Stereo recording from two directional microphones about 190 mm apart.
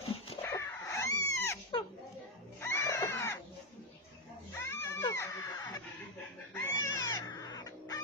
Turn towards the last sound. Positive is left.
turn(degrees=20)  # may be behind; listen again after turning